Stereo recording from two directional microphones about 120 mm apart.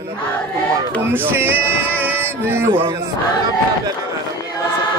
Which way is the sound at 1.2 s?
15° right (ahead or behind).